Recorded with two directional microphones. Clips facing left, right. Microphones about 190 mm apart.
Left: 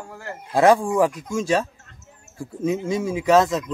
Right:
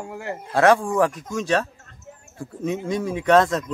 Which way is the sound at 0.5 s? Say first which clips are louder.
Left 1 dB; 15° left (ahead or behind).